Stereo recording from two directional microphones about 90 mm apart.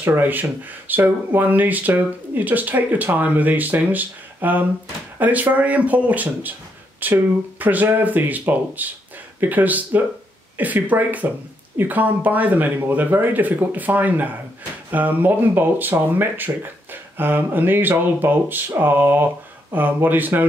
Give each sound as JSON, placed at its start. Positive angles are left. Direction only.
{"t": 0.0, "sound": "speech", "side_deg": -20}